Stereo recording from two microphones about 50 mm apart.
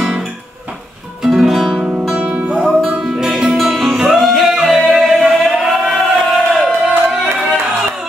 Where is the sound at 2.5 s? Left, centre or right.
Centre.